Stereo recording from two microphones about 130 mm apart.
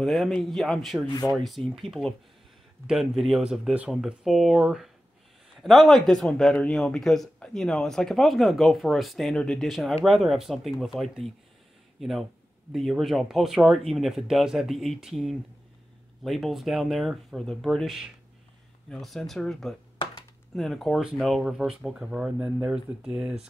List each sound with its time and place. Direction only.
0.0 s speech: centre (ahead or behind)
1.0 s speech: 25° left (ahead or behind)
1.3 s speech: centre (ahead or behind)